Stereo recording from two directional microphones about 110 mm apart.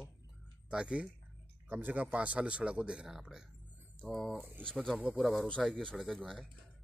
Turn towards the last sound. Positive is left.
turn(degrees=5)  # may be behind; listen again after turning